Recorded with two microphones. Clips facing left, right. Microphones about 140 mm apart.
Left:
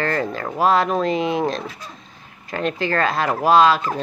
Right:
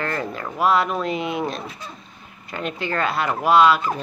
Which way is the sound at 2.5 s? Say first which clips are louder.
Left 4 dB; 35° left (ahead or behind).